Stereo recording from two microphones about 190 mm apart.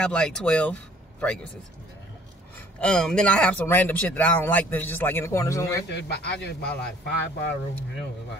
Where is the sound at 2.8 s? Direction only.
5° left (ahead or behind).